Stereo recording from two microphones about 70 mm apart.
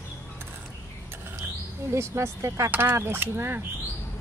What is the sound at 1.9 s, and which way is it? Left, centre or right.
Speech, right.